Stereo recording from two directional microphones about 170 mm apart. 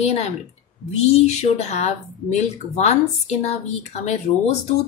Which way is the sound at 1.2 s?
40° left (ahead or behind).